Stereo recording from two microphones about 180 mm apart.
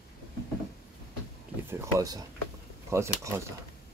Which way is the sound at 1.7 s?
20° right (ahead or behind).